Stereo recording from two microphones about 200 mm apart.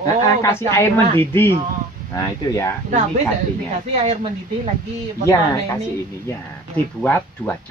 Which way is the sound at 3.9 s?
35° right (ahead or behind).